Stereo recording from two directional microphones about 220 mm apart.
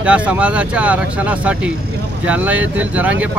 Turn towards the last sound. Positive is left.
turn(degrees=-5)  # may be behind; listen again after turning